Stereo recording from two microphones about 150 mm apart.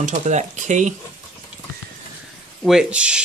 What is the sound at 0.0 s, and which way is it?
Speech, 55° right (ahead or behind).